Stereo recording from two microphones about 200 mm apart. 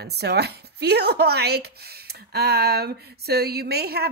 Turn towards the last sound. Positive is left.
turn(degrees=-50)  # may be behind; listen again after turning